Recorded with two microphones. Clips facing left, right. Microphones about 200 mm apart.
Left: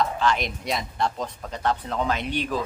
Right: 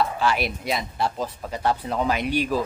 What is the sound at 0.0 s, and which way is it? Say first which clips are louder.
Speech: right 1 dB; 10° right (ahead or behind).